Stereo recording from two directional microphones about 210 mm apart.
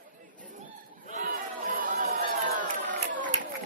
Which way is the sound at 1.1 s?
40° right (ahead or behind).